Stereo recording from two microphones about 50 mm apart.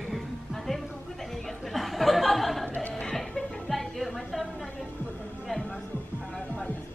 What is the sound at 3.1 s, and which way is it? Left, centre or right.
Music, centre.